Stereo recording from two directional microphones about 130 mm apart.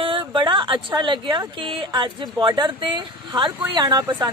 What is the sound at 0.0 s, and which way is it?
Speech, 45° right (ahead or behind).